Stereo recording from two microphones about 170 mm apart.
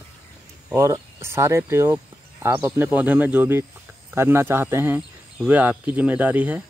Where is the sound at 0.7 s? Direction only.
15° right (ahead or behind).